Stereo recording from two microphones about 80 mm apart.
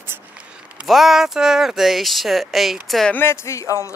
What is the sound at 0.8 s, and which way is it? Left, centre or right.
Speech, centre.